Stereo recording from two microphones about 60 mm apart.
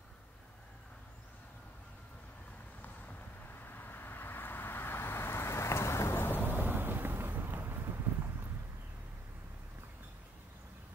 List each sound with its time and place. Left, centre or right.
3.6 s vehicle: left
6.1 s vehicle: left
6.5 s vehicle: right
8.1 s a sound: right